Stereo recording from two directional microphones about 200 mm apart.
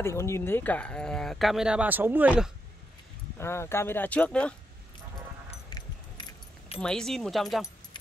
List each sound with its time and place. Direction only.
0.0 s speech: 15° left (ahead or behind); by 2.5 s 5° right (ahead or behind)
3.3 s speech: 10° left (ahead or behind)
5.7 s keys jangling: 20° left (ahead or behind)
6.8 s speech: 5° left (ahead or behind)